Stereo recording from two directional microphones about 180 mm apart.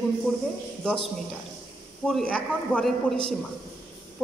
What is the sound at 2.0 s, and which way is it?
A woman's voice, 5° left (ahead or behind).